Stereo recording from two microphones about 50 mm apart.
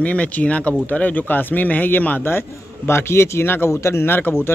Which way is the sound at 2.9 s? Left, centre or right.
Left.